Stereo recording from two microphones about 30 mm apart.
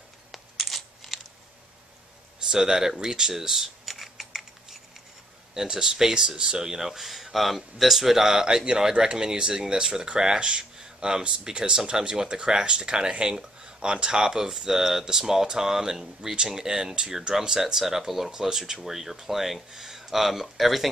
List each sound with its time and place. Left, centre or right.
0.3 s coin: centre
2.5 s speech: right
3.8 s typing: centre
5.5 s speech: centre
6.9 s speech: centre
8.5 s speech: right; by 20.9 s centre